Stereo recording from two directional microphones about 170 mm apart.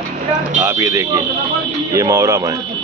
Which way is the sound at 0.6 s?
15° right (ahead or behind).